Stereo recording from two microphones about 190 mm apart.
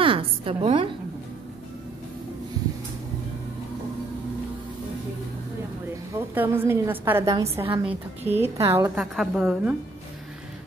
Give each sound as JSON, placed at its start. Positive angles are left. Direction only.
{"t": 0.0, "sound": "a woman's voice", "side_deg": -30}
{"t": 6.1, "sound": "a woman's voice", "side_deg": -10}
{"t": 7.7, "sound": "a woman's voice", "side_deg": -30}
{"t": 8.2, "sound": "a woman's voice", "side_deg": -10}
{"t": 8.9, "sound": "a woman's voice", "side_deg": -5}